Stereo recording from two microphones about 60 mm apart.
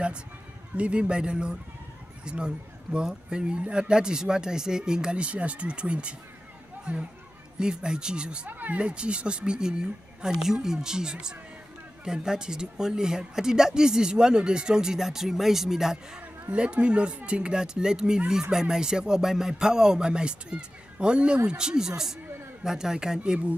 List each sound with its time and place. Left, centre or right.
0.7 s speech: centre
8.5 s speech: right; by 16.2 s centre
16.2 s speech: centre